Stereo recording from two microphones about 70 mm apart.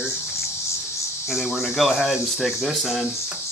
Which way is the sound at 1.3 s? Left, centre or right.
Centre.